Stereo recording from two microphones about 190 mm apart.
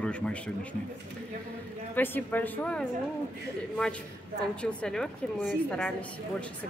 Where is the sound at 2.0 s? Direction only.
10° left (ahead or behind).